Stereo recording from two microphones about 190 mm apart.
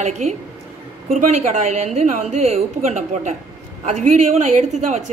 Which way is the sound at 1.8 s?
35° right (ahead or behind).